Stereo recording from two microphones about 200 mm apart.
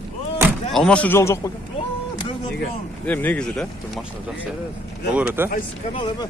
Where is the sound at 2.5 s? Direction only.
50° left (ahead or behind).